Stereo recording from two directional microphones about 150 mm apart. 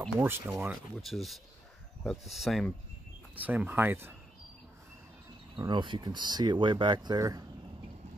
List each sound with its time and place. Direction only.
0.2 s speech: 15° right (ahead or behind)
0.9 s speech: centre (ahead or behind)
5.6 s speech: 30° right (ahead or behind)